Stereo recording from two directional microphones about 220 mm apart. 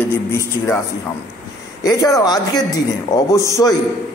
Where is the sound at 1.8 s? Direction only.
15° left (ahead or behind).